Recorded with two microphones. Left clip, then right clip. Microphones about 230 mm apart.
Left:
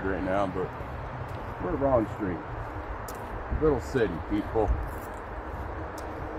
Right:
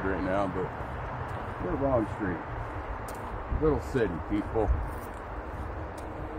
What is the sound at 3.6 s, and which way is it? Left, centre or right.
Speech, centre.